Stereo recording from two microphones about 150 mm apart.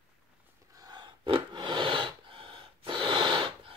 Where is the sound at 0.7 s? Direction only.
25° right (ahead or behind).